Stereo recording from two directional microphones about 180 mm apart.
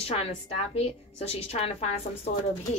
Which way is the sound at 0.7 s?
35° left (ahead or behind).